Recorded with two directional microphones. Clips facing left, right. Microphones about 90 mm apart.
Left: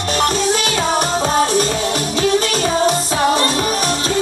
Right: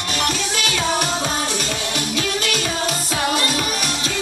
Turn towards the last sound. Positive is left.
turn(degrees=35)  # may be behind; listen again after turning